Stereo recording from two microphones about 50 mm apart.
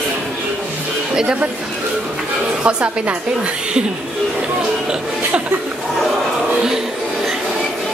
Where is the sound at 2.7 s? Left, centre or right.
Right.